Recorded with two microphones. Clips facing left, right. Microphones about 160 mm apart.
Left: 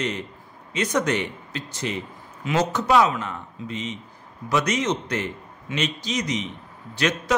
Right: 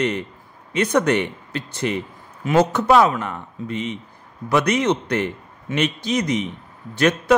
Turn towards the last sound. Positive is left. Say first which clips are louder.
# right 6 dB
turn(degrees=-50)  # may be behind; listen again after turning